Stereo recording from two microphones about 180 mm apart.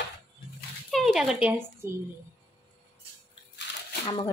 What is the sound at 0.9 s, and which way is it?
Speech, centre (ahead or behind).